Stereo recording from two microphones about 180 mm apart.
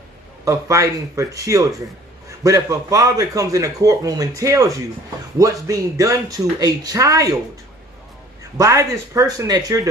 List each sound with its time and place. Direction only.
0.5 s a man's voice: 15° right (ahead or behind)
8.5 s speech: 15° right (ahead or behind)